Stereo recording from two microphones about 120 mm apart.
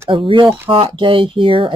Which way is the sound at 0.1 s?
45° right (ahead or behind).